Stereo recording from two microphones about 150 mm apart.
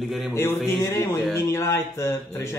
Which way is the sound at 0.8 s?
15° left (ahead or behind).